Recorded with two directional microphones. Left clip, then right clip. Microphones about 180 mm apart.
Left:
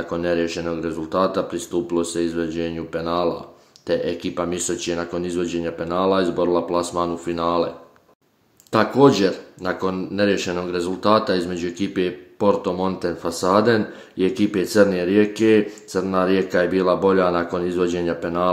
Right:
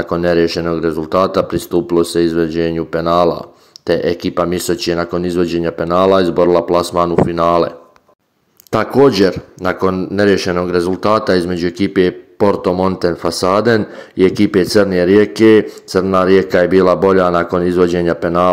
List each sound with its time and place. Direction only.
0.1 s speech: 45° right (ahead or behind)
8.7 s speech: 40° right (ahead or behind)